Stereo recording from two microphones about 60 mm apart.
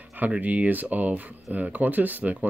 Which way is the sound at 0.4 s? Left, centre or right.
Right.